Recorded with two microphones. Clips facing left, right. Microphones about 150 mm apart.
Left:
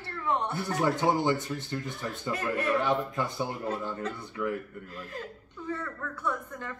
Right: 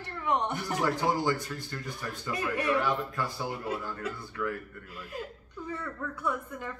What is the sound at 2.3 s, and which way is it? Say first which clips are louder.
Speech: even; 15° right (ahead or behind).